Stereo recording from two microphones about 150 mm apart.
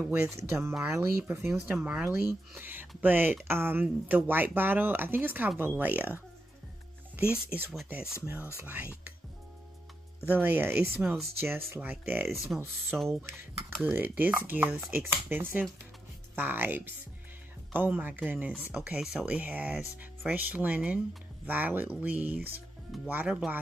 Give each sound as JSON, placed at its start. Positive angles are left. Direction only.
{"t": 0.1, "sound": "speech", "side_deg": -15}
{"t": 1.5, "sound": "speech", "side_deg": -5}
{"t": 7.3, "sound": "speech", "side_deg": -10}
{"t": 10.3, "sound": "speech", "side_deg": -15}
{"t": 12.3, "sound": "speech", "side_deg": 0}
{"t": 13.7, "sound": "speech", "side_deg": -10}